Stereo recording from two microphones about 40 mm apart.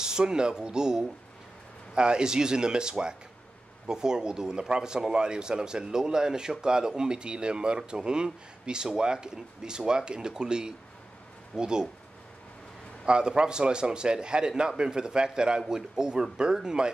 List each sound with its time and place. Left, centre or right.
0.0 s speech: centre
13.0 s a man's voice: right